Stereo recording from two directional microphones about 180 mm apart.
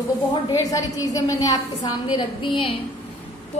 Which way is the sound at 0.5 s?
20° left (ahead or behind).